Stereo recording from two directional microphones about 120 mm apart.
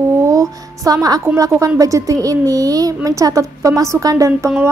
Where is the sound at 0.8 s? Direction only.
30° right (ahead or behind).